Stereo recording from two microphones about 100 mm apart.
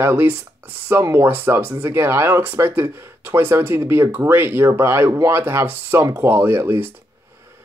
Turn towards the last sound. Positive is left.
turn(degrees=-25)  # may be behind; listen again after turning